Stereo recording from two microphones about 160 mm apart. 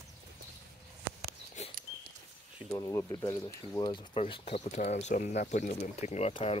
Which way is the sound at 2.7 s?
20° left (ahead or behind).